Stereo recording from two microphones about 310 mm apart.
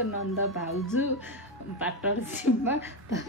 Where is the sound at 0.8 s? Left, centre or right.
Centre.